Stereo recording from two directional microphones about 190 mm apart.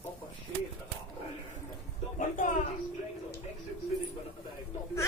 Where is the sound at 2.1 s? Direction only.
45° left (ahead or behind).